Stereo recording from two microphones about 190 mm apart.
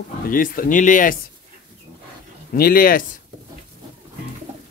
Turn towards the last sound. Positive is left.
turn(degrees=50)  # may be behind; listen again after turning